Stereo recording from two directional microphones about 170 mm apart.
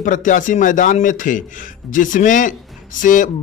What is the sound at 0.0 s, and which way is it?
A man's voice, 50° left (ahead or behind).